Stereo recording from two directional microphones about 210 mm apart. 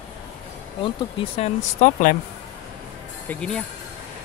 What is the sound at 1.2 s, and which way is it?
Speech, 30° left (ahead or behind).